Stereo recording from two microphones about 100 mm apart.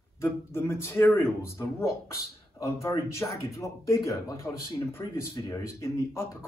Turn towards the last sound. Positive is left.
turn(degrees=30)  # may be behind; listen again after turning